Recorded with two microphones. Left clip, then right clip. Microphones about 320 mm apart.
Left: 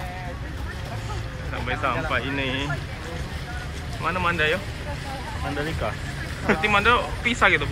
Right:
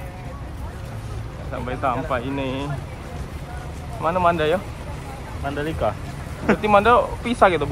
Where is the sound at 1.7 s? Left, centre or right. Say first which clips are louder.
Right 1 dB; centre.